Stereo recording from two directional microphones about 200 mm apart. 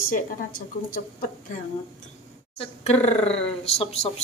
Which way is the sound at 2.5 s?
30° left (ahead or behind).